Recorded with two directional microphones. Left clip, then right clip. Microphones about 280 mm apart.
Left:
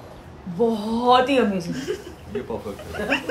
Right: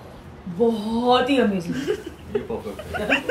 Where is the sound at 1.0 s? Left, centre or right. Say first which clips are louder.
Left 2 dB; centre.